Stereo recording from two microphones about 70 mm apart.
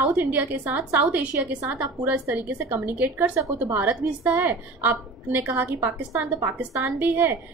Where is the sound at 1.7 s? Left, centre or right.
Right.